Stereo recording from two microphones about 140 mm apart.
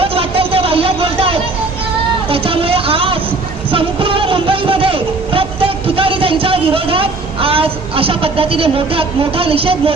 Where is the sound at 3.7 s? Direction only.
40° right (ahead or behind).